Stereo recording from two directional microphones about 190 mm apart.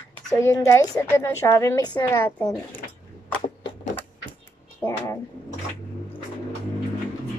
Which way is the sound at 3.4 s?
35° left (ahead or behind).